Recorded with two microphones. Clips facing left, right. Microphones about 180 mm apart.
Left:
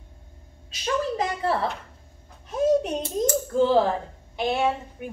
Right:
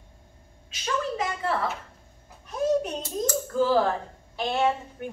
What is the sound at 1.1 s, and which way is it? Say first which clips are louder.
Speech: left 3 dB; 30° left (ahead or behind).